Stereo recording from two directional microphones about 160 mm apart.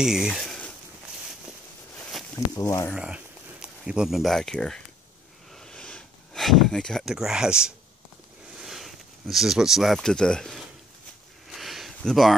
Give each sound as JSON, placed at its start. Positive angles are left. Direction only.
{"t": 0.0, "sound": "speech", "side_deg": -5}
{"t": 2.5, "sound": "speech", "side_deg": 20}
{"t": 2.9, "sound": "speech", "side_deg": -5}
{"t": 5.5, "sound": "a sound", "side_deg": 5}
{"t": 8.5, "sound": "speech", "side_deg": 0}
{"t": 11.4, "sound": "a sound", "side_deg": 0}